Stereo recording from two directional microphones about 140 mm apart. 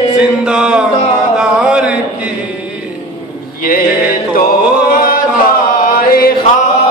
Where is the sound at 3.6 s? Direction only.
90° left.